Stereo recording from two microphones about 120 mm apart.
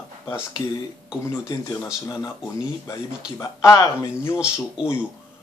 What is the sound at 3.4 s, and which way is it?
A man's voice, 25° left (ahead or behind).